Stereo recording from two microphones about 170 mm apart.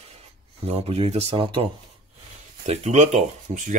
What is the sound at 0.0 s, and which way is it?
Speech, 35° right (ahead or behind).